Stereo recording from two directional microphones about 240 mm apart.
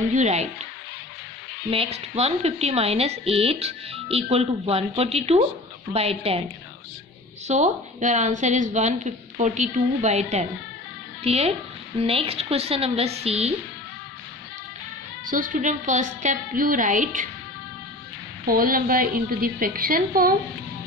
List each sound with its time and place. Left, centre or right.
0.1 s speech: right
1.7 s speech: right
7.4 s speech: right
15.2 s a woman's voice: right
18.4 s a woman's voice: right